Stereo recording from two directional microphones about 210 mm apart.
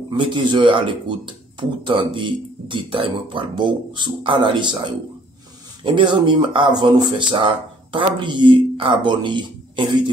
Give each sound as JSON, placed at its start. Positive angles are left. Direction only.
{"t": 0.1, "sound": "speech", "side_deg": -20}